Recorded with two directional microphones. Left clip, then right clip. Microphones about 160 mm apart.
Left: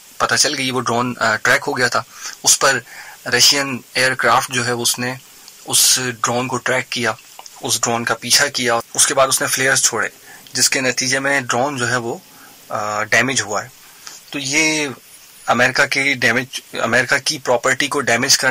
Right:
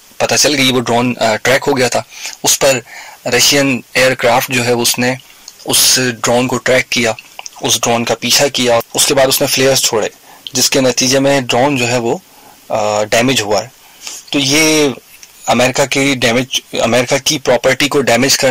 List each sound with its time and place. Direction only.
0.2 s speech: 25° right (ahead or behind)